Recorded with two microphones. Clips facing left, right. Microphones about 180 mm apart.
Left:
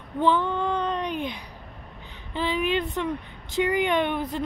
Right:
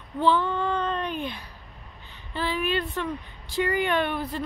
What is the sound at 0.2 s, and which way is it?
Child singing, 15° left (ahead or behind).